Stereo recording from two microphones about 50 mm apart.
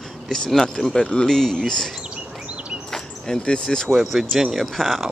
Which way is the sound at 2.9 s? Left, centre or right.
Centre.